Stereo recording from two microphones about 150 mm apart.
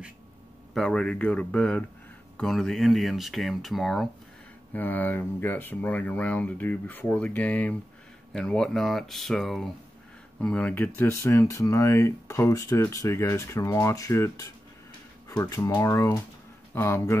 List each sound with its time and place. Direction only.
0.7 s speech: 5° left (ahead or behind)
4.7 s speech: 10° left (ahead or behind)